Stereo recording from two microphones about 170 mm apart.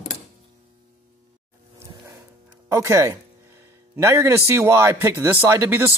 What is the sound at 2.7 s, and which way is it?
Speech, 20° right (ahead or behind).